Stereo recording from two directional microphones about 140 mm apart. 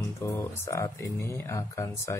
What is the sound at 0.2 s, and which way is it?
Speech, 20° left (ahead or behind).